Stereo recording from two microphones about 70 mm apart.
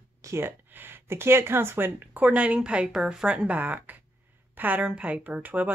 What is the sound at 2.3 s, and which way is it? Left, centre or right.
Speech, centre.